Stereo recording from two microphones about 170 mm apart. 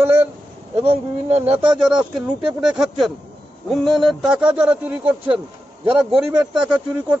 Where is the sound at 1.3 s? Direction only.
35° right (ahead or behind).